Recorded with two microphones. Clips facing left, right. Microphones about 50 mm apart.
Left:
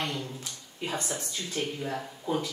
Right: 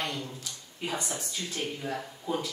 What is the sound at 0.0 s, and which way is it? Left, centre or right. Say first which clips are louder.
A woman's voice: left 1 dB; centre.